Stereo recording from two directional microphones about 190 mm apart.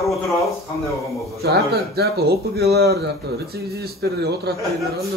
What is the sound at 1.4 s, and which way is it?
Speech, 55° right (ahead or behind).